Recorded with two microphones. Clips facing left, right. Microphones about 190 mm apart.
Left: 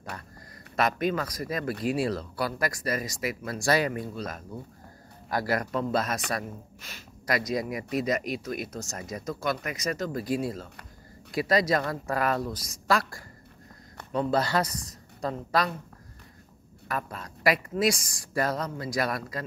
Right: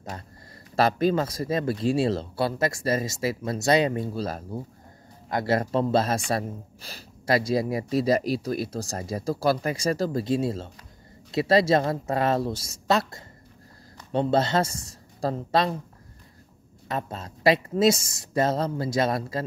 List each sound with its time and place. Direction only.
0.7 s speech: 30° right (ahead or behind)
16.8 s speech: 25° right (ahead or behind)